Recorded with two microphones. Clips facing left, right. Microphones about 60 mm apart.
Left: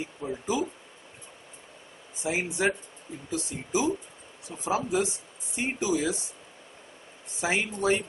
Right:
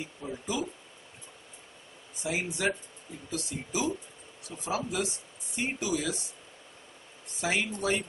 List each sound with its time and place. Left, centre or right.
0.2 s speech: left
2.2 s speech: left
7.3 s speech: left